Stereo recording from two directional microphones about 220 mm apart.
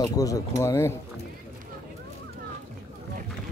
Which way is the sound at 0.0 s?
15° left (ahead or behind).